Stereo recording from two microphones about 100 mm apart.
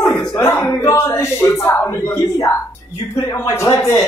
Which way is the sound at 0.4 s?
25° left (ahead or behind).